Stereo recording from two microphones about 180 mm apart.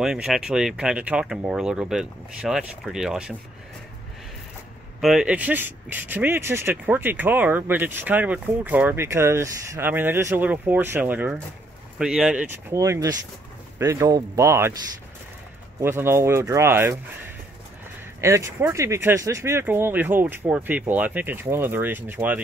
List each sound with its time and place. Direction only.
0.0 s speech: 5° right (ahead or behind)
5.0 s speech: 5° right (ahead or behind)
12.7 s speech: 15° right (ahead or behind)
15.8 s speech: 15° right (ahead or behind)